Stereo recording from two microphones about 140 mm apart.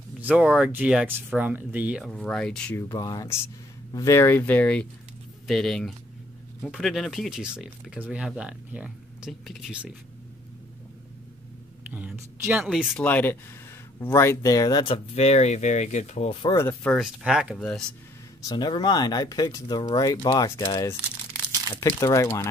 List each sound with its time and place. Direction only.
0.2 s speech: 10° right (ahead or behind); by 2.7 s 5° left (ahead or behind)
2.7 s speech: 20° left (ahead or behind); by 9.9 s 5° right (ahead or behind)
11.9 s speech: 10° right (ahead or behind)
12.9 s speech: 15° left (ahead or behind); by 15.0 s 30° left (ahead or behind)
15.1 s speech: 50° left (ahead or behind)
16.5 s speech: 15° left (ahead or behind)
16.9 s speech: 5° right (ahead or behind)
18.4 s speech: 30° left (ahead or behind)